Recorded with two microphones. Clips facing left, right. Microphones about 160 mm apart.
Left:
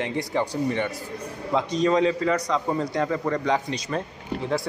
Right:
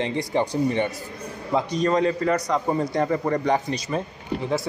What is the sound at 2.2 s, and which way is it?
A man's voice, 10° right (ahead or behind).